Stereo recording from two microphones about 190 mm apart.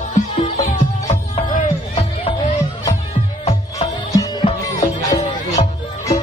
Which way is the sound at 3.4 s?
30° left (ahead or behind).